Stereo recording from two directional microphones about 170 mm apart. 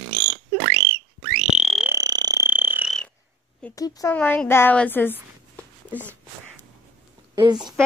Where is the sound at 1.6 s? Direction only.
5° right (ahead or behind).